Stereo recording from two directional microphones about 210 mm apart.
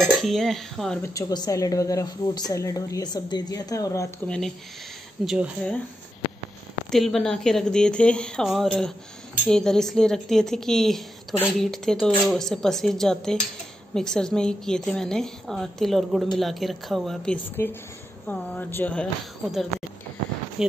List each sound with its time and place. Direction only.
0.0 s a woman's voice: centre (ahead or behind)
1.0 s a woman's voice: 15° left (ahead or behind)
5.2 s a woman's voice: centre (ahead or behind)
6.9 s a woman's voice: centre (ahead or behind)